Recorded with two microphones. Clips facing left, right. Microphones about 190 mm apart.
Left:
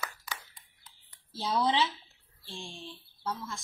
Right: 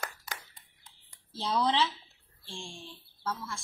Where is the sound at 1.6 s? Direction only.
15° left (ahead or behind).